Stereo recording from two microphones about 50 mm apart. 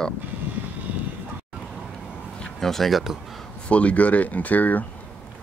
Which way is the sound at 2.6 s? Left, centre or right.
Centre.